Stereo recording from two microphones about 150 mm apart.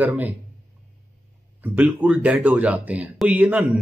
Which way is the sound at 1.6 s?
10° right (ahead or behind).